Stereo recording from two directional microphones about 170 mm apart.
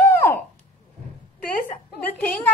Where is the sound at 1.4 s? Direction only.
55° left (ahead or behind).